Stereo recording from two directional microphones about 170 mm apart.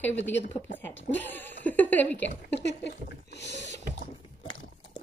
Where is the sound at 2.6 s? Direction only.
85° left.